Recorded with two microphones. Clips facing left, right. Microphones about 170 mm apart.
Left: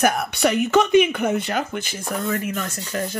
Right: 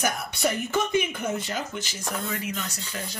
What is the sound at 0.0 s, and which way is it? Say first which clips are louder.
Speech: left 7 dB; 70° left (ahead or behind).